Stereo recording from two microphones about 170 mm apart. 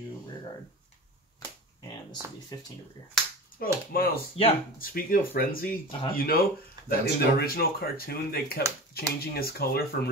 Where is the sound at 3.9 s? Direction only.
60° left (ahead or behind).